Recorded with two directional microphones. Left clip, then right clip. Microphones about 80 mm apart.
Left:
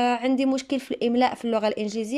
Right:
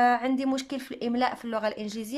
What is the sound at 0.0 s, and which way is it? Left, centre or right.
Speech, left.